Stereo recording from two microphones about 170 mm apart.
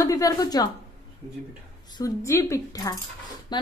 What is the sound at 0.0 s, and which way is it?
Speech, 20° left (ahead or behind).